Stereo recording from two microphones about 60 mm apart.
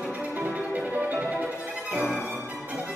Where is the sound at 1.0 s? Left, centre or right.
Right.